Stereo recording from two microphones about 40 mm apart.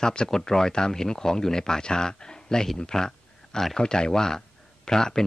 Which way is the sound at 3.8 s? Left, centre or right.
Centre.